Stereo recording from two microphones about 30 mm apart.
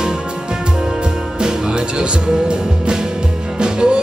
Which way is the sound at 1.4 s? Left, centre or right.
Right.